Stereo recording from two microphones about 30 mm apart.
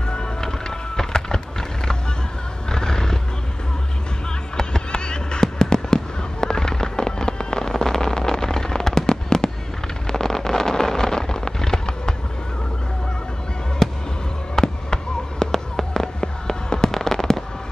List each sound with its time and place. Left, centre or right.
0.4 s music: centre
2.7 s neigh: centre
4.6 s fireworks: left
13.8 s fireworks: centre
15.5 s fireworks: centre
16.2 s fireworks: left